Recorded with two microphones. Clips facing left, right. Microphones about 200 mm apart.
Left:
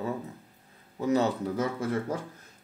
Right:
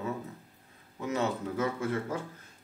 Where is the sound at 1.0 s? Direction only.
35° left (ahead or behind).